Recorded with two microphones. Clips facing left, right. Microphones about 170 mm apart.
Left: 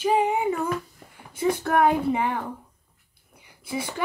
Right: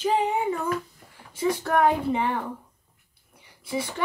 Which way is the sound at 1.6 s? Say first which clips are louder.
Left 1 dB; 5° left (ahead or behind).